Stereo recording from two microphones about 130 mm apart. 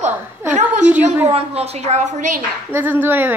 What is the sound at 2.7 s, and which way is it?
Speech, 15° right (ahead or behind).